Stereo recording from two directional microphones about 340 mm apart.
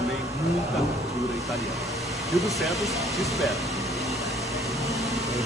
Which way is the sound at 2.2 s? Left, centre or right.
Centre.